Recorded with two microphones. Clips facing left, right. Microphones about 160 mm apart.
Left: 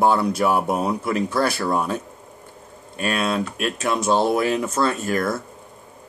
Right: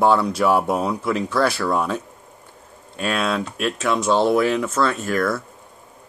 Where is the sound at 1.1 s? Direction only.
45° left (ahead or behind).